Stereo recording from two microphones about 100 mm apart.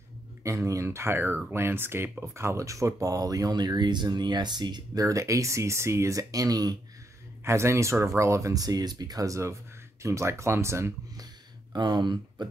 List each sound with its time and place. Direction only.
0.4 s speech: 30° right (ahead or behind)
5.0 s speech: 30° right (ahead or behind)
7.4 s speech: 30° right (ahead or behind)
11.7 s speech: 45° right (ahead or behind)